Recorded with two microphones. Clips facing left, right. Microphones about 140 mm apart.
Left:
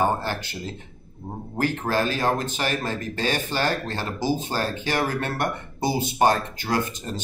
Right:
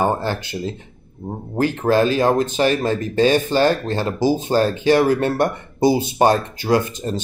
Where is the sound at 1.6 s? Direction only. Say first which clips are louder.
Right 7 dB; 20° right (ahead or behind).